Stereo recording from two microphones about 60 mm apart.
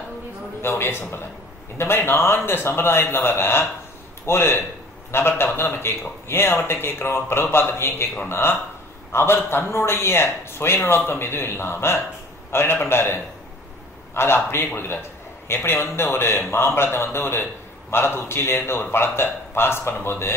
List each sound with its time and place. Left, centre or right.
0.6 s a man's voice: left